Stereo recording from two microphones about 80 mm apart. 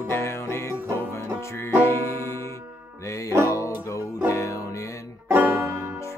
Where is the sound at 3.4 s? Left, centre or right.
Left.